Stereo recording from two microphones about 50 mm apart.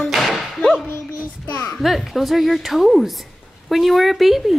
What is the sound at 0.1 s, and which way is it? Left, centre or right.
Music, centre.